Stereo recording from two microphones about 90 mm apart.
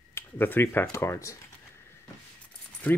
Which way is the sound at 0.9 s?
35° left (ahead or behind).